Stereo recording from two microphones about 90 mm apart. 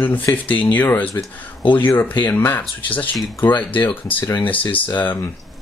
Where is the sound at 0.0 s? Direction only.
20° left (ahead or behind).